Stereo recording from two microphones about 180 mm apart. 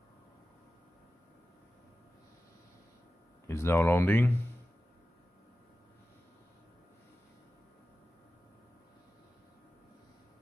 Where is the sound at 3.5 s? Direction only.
15° left (ahead or behind).